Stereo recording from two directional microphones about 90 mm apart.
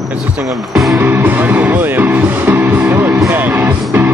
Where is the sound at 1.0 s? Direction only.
20° right (ahead or behind).